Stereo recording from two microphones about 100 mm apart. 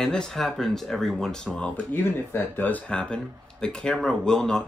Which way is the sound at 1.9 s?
25° left (ahead or behind).